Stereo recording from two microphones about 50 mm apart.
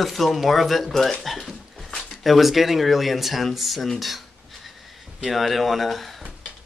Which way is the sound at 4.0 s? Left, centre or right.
Centre.